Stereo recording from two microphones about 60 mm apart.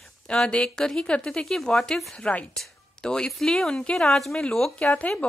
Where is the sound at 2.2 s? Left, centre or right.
Centre.